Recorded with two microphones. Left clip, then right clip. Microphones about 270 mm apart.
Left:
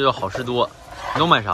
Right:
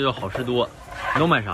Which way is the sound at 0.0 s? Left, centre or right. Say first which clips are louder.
Left 4 dB; centre.